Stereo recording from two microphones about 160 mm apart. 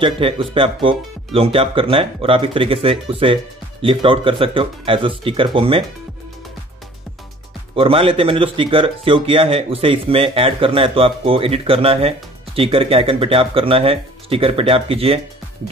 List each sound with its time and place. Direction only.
0.0 s speech: 35° right (ahead or behind)
7.7 s speech: 35° right (ahead or behind)